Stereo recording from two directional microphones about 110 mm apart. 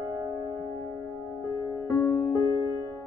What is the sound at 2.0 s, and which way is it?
Music, 20° left (ahead or behind).